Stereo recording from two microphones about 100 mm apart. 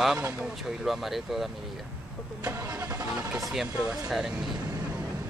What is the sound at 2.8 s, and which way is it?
Vehicle, 35° right (ahead or behind).